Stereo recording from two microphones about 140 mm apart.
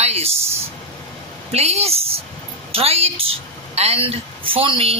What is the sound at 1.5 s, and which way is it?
A woman's voice, 50° right (ahead or behind).